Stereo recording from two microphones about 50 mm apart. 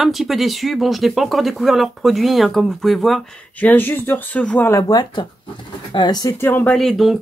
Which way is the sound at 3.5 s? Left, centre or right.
Left.